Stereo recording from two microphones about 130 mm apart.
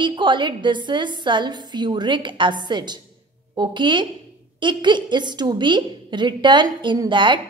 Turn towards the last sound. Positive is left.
turn(degrees=-40)  # may be behind; listen again after turning